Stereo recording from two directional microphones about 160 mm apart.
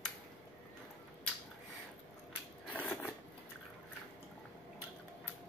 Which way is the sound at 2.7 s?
10° left (ahead or behind).